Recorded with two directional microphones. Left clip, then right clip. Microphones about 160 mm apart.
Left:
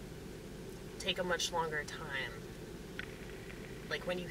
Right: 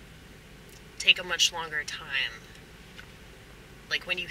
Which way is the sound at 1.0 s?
25° right (ahead or behind).